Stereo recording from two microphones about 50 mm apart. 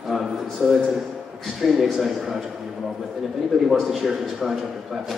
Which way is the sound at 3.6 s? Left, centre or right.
Centre.